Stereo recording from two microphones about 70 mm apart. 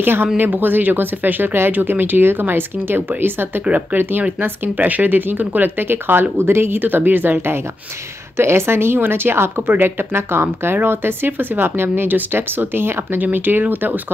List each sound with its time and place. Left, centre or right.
0.0 s speech: right